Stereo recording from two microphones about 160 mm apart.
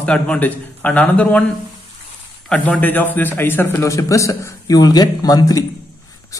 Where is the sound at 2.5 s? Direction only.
10° left (ahead or behind).